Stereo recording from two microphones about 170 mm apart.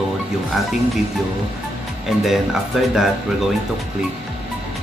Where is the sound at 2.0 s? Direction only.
Centre (ahead or behind).